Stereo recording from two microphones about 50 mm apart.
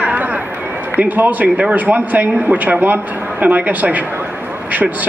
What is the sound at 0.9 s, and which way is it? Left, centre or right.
A man's voice, right.